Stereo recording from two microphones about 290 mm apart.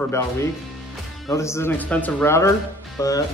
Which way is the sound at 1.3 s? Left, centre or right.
Centre.